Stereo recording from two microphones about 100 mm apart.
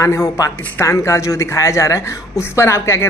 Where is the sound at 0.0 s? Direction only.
30° left (ahead or behind).